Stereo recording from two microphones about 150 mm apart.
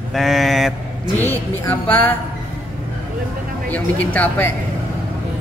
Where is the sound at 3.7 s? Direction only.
10° left (ahead or behind).